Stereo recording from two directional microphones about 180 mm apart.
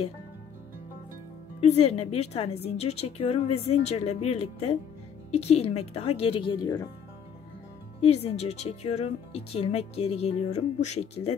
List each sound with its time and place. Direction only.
1.6 s speech: 35° left (ahead or behind)
8.0 s speech: 35° left (ahead or behind)